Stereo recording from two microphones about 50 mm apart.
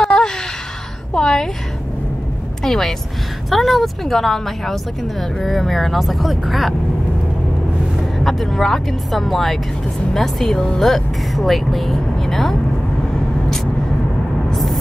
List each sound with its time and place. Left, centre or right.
0.1 s a sound: centre
1.1 s a woman's voice: centre
2.6 s speech: centre
8.2 s speech: centre
14.5 s vehicle: centre